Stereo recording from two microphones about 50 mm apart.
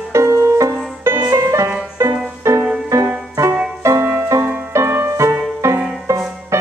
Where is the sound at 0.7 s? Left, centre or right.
Right.